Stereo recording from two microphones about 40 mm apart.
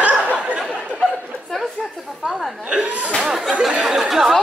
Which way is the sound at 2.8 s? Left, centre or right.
Right.